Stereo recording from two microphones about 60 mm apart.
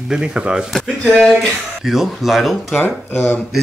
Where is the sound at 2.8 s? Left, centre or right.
Left.